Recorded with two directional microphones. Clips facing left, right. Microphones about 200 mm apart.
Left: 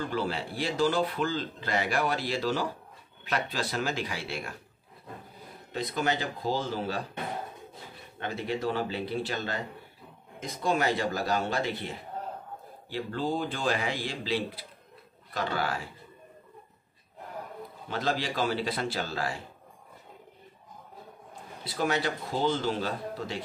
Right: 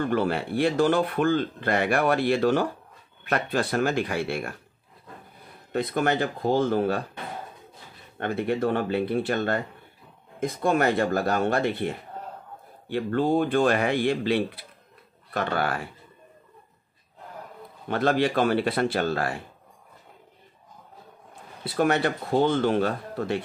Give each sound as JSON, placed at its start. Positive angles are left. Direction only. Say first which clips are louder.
{"t": 0.0, "sound": "speech", "louder": "right 7 dB", "side_deg": -60}
{"t": 5.7, "sound": "speech", "louder": "right 5 dB", "side_deg": -55}
{"t": 8.2, "sound": "speech", "louder": "right 7 dB", "side_deg": -55}
{"t": 17.8, "sound": "speech", "louder": "right 8 dB", "side_deg": -60}
{"t": 21.6, "sound": "speech", "louder": "right 6 dB", "side_deg": -60}